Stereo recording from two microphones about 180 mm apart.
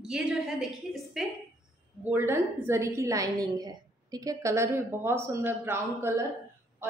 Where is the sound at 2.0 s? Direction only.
15° right (ahead or behind).